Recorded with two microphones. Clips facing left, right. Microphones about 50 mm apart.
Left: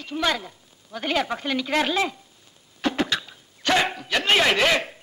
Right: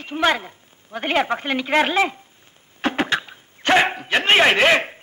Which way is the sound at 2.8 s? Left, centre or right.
Right.